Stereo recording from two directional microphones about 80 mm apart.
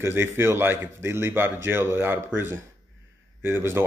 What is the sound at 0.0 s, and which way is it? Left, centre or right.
Speech, right.